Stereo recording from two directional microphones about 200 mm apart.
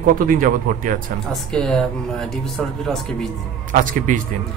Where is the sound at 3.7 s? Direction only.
40° right (ahead or behind).